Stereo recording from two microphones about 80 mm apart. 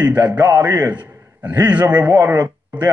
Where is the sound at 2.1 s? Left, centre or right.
Right.